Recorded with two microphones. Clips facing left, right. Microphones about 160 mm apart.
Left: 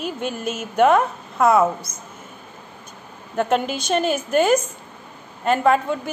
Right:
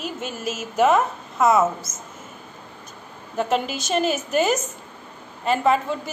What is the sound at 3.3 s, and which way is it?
A woman's voice, centre (ahead or behind).